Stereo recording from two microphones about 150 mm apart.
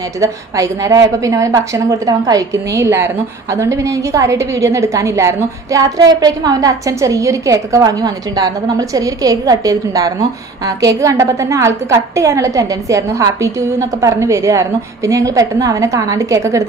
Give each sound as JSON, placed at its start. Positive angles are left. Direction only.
{"t": 0.2, "sound": "a woman's voice", "side_deg": -20}